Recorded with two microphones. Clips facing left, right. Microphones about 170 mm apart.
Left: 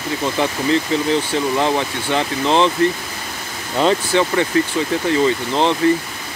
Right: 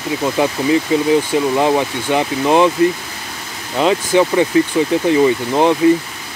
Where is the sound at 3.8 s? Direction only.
5° right (ahead or behind).